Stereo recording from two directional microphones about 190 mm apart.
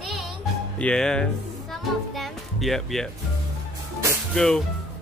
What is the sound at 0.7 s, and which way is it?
Speech, 5° left (ahead or behind).